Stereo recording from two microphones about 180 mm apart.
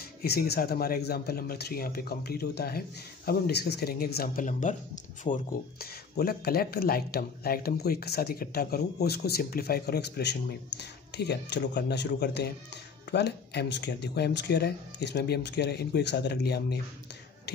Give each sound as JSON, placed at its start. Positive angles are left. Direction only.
{"t": 0.2, "sound": "speech", "side_deg": 60}